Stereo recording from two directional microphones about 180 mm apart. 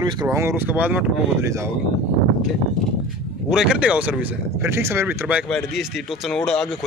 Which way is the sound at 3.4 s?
5° right (ahead or behind).